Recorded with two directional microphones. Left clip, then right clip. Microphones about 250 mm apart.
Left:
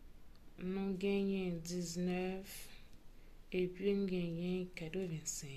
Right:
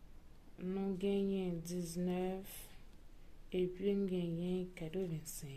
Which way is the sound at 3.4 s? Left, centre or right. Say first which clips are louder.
Even; centre.